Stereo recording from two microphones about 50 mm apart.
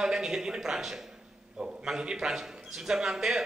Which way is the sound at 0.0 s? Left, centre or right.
Centre.